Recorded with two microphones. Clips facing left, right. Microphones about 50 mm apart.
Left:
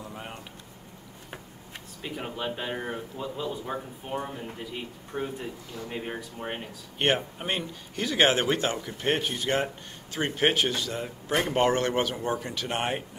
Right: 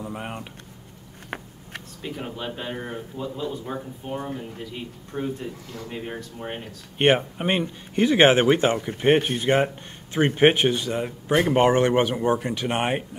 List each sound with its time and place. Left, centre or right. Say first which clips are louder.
0.0 s a sound: right 7 dB; right
2.0 s a man's voice: right 1 dB; centre
7.0 s speech: right 6 dB; right